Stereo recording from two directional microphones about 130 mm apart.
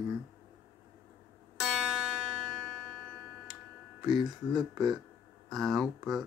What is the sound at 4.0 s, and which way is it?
Speech, 30° right (ahead or behind).